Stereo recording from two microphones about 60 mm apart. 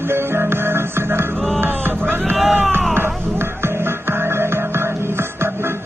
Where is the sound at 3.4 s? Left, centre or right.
Right.